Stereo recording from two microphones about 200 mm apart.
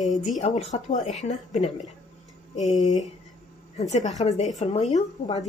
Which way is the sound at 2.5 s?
Centre (ahead or behind).